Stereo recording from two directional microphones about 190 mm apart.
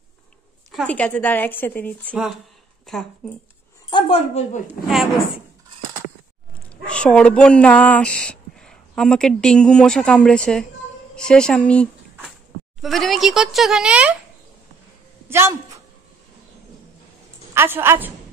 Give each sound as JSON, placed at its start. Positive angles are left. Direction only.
{"t": 0.7, "sound": "speech", "side_deg": 5}
{"t": 3.9, "sound": "a woman's voice", "side_deg": 30}
{"t": 4.6, "sound": "speech", "side_deg": -5}
{"t": 6.9, "sound": "speech", "side_deg": 5}
{"t": 15.2, "sound": "a woman's voice", "side_deg": -15}
{"t": 17.6, "sound": "a woman's voice", "side_deg": -10}